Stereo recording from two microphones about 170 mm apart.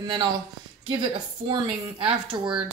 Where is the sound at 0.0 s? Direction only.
25° right (ahead or behind).